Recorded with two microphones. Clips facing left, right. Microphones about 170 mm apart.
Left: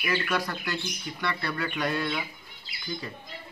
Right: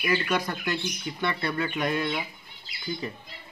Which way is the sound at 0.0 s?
20° right (ahead or behind).